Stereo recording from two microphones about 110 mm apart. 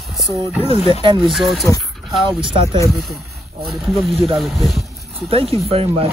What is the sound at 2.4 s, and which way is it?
Speech, 50° right (ahead or behind).